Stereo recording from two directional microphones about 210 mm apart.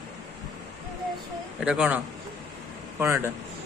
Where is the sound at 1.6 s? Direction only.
5° right (ahead or behind).